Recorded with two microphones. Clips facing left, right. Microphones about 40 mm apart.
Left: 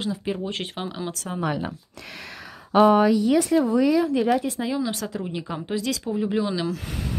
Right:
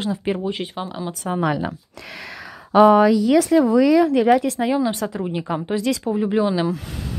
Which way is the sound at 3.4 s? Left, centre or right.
Right.